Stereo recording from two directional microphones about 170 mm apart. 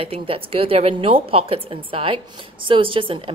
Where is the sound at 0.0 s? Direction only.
35° right (ahead or behind).